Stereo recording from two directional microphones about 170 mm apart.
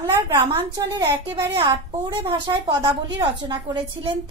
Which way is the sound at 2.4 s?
25° right (ahead or behind).